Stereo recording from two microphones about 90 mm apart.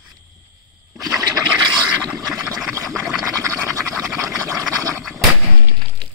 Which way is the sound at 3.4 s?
30° right (ahead or behind).